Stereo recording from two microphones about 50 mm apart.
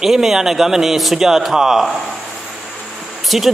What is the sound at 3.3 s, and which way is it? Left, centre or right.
Speech, centre.